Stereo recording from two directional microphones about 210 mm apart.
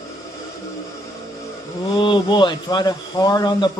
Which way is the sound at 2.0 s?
20° left (ahead or behind).